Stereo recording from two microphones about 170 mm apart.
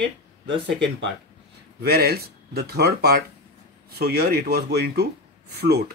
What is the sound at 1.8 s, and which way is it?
Speech, 65° right (ahead or behind).